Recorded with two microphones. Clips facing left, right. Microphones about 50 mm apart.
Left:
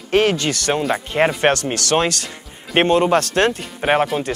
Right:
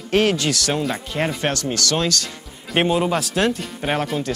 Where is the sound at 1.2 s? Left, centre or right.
Left.